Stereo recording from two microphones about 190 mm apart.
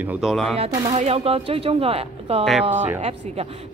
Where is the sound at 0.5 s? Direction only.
30° right (ahead or behind).